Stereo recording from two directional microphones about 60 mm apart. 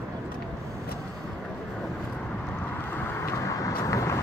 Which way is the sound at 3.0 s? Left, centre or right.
Left.